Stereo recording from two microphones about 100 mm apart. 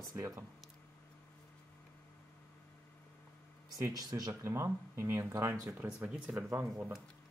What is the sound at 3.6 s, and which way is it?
Speech, 35° right (ahead or behind).